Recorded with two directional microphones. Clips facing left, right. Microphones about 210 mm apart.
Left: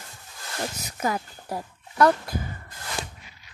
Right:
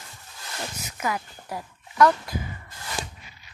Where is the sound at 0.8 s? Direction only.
35° left (ahead or behind).